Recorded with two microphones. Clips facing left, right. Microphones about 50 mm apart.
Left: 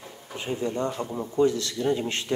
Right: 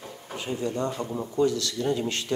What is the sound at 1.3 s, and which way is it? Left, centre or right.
Speech, left.